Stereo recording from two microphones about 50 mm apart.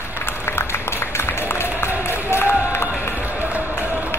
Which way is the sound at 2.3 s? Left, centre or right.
Left.